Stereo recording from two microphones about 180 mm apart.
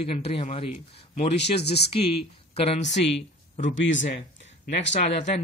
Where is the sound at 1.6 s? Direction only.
65° left (ahead or behind).